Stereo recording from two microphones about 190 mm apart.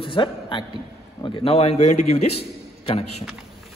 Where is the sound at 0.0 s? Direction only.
25° left (ahead or behind).